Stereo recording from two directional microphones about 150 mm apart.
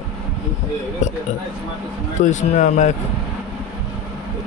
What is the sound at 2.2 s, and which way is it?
Speech, 55° left (ahead or behind).